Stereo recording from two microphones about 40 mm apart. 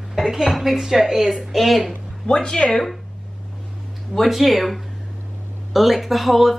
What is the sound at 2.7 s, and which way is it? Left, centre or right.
Speech, centre.